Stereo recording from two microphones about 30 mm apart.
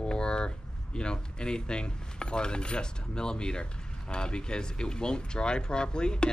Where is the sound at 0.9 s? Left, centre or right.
Left.